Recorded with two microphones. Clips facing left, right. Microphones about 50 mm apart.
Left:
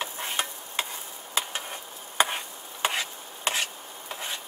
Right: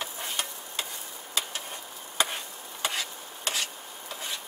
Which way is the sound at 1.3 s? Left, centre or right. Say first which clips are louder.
Left 3 dB; left.